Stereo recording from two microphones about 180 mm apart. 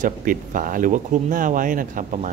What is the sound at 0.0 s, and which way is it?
Speech, 50° right (ahead or behind).